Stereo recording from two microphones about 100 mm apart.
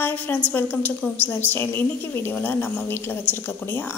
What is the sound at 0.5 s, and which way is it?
A woman's voice, 20° left (ahead or behind).